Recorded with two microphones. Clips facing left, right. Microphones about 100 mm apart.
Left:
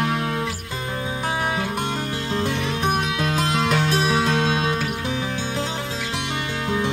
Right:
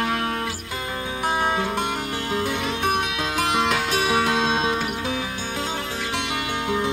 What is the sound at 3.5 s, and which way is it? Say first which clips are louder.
Music: even; 20° right (ahead or behind).